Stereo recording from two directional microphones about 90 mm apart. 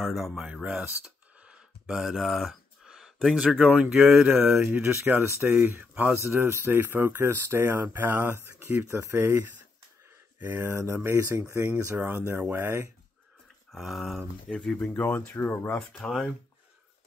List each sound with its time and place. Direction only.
0.0 s speech: centre (ahead or behind)
0.5 s a sound: 10° right (ahead or behind)
3.5 s speech: 15° right (ahead or behind)
4.3 s speech: 25° right (ahead or behind)
13.7 s speech: centre (ahead or behind); by 15.8 s 20° left (ahead or behind)